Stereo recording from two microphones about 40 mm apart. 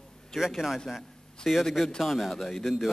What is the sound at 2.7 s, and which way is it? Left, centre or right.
Speech, centre.